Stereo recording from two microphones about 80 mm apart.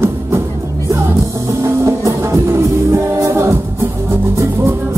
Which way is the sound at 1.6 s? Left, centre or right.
Right.